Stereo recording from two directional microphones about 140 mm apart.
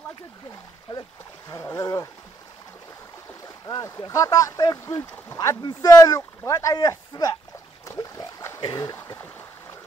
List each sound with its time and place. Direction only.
1.5 s speech: 20° left (ahead or behind)
3.6 s speech: 25° left (ahead or behind)
7.8 s splash: 25° left (ahead or behind)
8.5 s a sound: 30° left (ahead or behind)